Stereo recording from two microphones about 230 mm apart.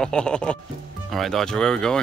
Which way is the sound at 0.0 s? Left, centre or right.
Centre.